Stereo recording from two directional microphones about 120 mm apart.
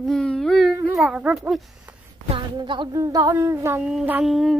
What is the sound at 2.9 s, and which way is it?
Child singing, 30° right (ahead or behind).